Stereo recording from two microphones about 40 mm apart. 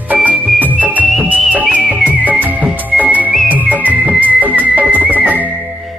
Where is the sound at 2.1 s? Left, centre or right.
Right.